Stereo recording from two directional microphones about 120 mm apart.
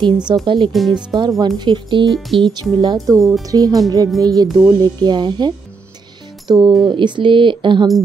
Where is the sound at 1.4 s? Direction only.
40° right (ahead or behind).